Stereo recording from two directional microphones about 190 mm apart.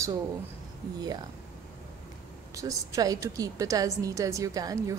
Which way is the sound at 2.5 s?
15° right (ahead or behind).